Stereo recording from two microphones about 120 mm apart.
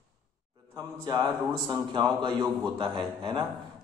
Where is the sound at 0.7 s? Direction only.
35° right (ahead or behind).